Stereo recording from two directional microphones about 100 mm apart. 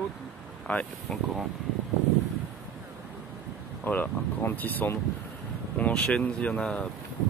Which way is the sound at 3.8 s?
20° left (ahead or behind).